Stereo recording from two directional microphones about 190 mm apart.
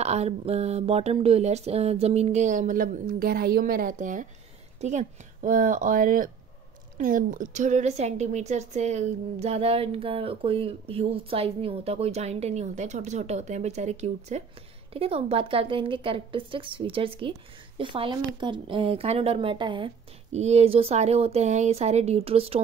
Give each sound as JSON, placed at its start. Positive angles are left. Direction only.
{"t": 0.0, "sound": "a woman's voice", "side_deg": -35}